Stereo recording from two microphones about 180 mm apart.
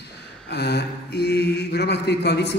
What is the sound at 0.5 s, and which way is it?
Mantra, 65° left (ahead or behind).